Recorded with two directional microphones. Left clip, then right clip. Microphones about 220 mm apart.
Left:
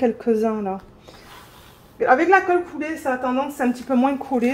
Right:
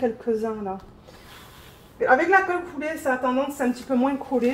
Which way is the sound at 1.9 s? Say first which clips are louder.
Left 3 dB; 40° left (ahead or behind).